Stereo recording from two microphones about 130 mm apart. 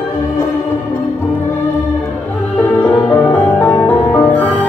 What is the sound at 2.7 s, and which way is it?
Music, 10° left (ahead or behind).